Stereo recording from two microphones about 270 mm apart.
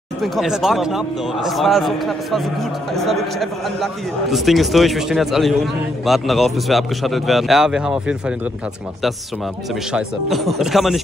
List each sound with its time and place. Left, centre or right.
0.2 s a man's voice: centre
9.9 s a man's voice: centre